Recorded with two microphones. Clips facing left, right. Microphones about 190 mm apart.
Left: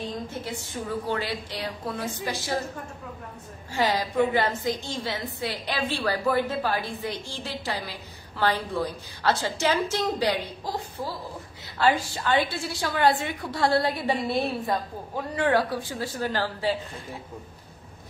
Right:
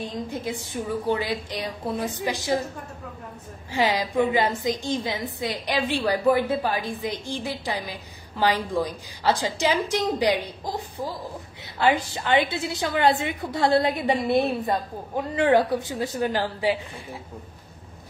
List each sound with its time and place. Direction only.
0.3 s a woman's voice: 15° right (ahead or behind)
3.7 s a woman's voice: 15° right (ahead or behind)